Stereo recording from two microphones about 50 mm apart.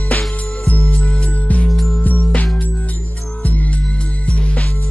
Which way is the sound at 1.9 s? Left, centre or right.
Left.